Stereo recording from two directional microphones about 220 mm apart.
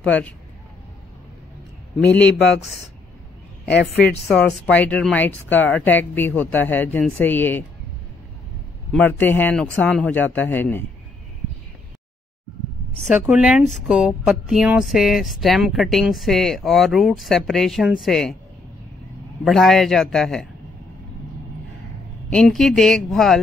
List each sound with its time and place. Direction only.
0.0 s speech: 5° left (ahead or behind)
2.0 s speech: 5° left (ahead or behind)
3.9 s speech: 50° left (ahead or behind)
4.6 s speech: 5° left (ahead or behind)
8.9 s speech: 10° left (ahead or behind)
13.1 s speech: 5° right (ahead or behind)
19.4 s speech: centre (ahead or behind)
22.3 s speech: centre (ahead or behind)